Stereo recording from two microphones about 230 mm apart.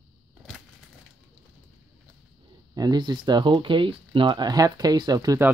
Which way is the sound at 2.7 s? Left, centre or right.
Centre.